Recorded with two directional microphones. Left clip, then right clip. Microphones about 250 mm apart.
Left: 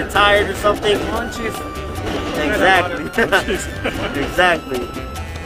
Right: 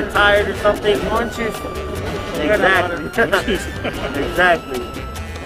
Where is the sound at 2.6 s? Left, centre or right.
Centre.